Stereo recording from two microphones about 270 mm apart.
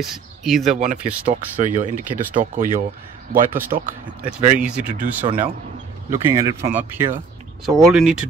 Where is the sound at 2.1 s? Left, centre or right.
Centre.